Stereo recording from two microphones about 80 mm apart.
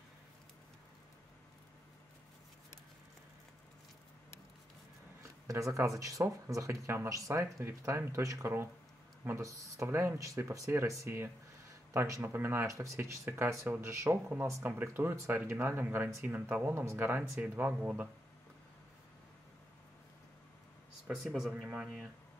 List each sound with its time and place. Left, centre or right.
5.5 s speech: right
21.2 s speech: centre